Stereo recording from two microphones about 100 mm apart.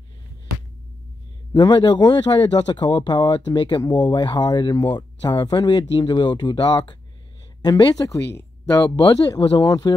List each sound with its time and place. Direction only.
1.5 s speech: 50° left (ahead or behind)